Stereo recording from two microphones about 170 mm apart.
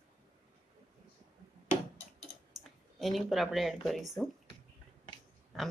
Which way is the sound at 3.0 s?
Centre (ahead or behind).